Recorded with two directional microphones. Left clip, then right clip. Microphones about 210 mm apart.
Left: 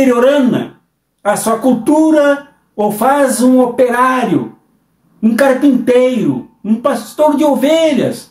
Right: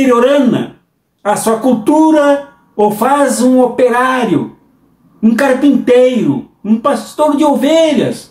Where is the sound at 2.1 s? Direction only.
20° left (ahead or behind).